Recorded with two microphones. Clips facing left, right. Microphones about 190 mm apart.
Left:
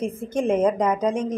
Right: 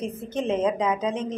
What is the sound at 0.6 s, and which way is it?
Speech, 50° left (ahead or behind).